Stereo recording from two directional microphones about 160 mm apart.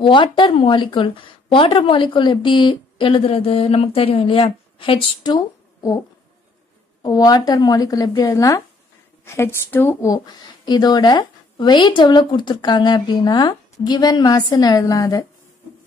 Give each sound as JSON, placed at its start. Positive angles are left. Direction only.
{"t": 0.0, "sound": "a woman's voice", "side_deg": 30}
{"t": 7.0, "sound": "a woman's voice", "side_deg": 25}